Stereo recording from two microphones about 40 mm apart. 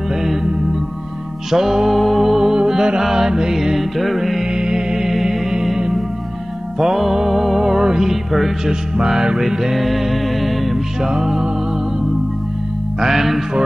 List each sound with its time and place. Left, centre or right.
0.1 s music: centre
1.5 s music: centre
3.7 s music: centre
4.5 s music: centre
6.8 s music: centre
8.6 s music: centre
11.0 s music: centre
13.0 s music: centre